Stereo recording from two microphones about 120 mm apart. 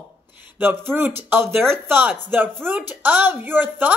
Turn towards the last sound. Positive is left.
turn(degrees=-15)  # may be behind; listen again after turning